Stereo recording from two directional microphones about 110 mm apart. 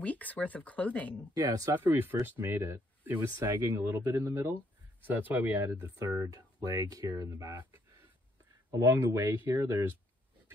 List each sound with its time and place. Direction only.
0.0 s speech: 15° left (ahead or behind)
1.3 s speech: 35° right (ahead or behind)
1.8 s speech: 20° right (ahead or behind)
5.0 s speech: 15° right (ahead or behind); by 7.6 s 30° right (ahead or behind)
8.7 s speech: 25° right (ahead or behind)